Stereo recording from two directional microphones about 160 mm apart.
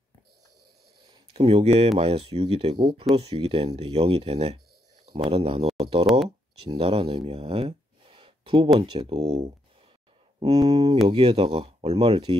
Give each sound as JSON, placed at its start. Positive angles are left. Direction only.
{"t": 1.3, "sound": "speech", "side_deg": -40}
{"t": 10.7, "sound": "speech", "side_deg": -20}
{"t": 11.1, "sound": "speech", "side_deg": -40}